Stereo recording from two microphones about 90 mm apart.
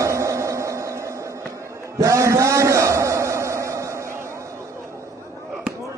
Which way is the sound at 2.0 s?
35° right (ahead or behind).